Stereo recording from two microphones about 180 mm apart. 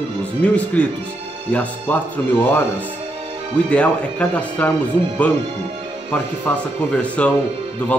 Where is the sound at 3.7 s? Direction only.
5° left (ahead or behind).